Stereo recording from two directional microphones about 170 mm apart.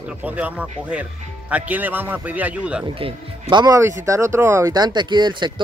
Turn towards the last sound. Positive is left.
turn(degrees=-25)  # may be behind; listen again after turning